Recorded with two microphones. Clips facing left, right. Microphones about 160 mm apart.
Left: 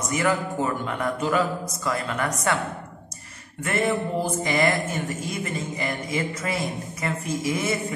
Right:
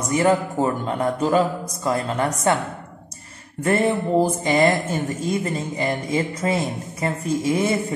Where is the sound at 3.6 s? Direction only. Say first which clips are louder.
Right 5 dB; 35° right (ahead or behind).